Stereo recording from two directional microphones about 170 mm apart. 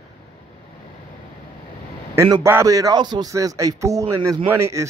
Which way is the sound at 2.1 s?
15° right (ahead or behind).